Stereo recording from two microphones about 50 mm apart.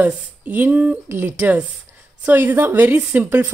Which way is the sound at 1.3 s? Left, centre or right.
Right.